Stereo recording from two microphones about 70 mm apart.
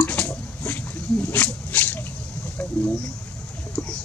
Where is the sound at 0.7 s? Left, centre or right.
Left.